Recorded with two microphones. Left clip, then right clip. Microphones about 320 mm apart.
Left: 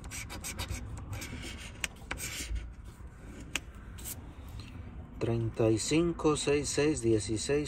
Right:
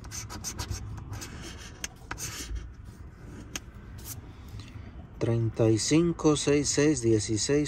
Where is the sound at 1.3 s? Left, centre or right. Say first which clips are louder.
Even; right.